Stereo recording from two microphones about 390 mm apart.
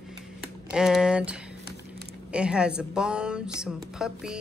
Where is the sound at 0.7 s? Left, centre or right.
Centre.